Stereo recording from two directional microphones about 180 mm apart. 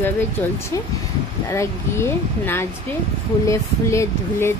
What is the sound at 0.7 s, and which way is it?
Speech, 15° left (ahead or behind).